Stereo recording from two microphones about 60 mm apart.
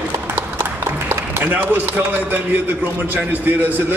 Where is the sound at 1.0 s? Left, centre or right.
Right.